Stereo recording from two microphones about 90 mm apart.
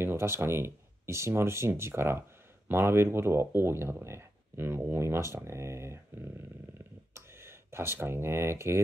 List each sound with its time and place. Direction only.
0.0 s speech: 30° right (ahead or behind)